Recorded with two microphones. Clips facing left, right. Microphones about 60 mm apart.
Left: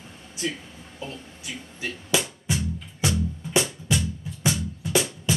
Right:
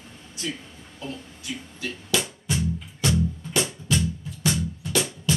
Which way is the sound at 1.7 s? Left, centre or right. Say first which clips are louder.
Left 1 dB; left.